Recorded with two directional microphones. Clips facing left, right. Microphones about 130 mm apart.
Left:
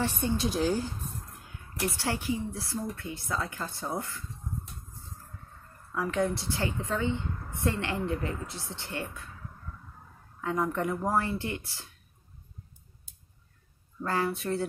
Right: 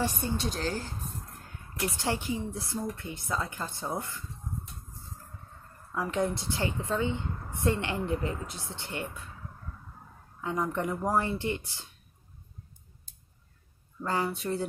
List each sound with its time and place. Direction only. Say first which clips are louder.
0.4 s speech: left 5 dB; 10° left (ahead or behind)
2.0 s speech: right 1 dB; 20° right (ahead or behind)
5.9 s a woman's voice: left 1 dB; 20° right (ahead or behind)
10.4 s speech: left 1 dB; 15° right (ahead or behind)
14.0 s a woman's voice: left 1 dB; 20° right (ahead or behind)